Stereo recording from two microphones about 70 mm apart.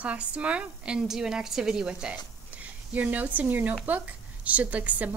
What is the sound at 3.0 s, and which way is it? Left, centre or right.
Speech, right.